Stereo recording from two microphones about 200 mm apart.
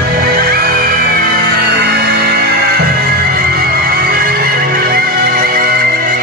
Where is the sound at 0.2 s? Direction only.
50° right (ahead or behind).